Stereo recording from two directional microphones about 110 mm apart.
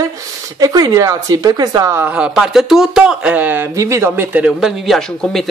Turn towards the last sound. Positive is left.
turn(degrees=5)  # may be behind; listen again after turning